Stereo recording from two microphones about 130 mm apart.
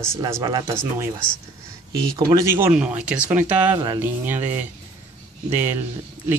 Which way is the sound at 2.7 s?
10° right (ahead or behind).